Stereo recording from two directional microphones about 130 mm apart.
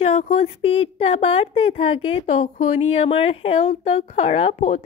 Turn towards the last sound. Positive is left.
turn(degrees=55)  # may be behind; listen again after turning